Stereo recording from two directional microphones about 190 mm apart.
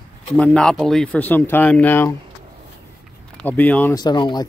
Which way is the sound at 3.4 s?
10° left (ahead or behind).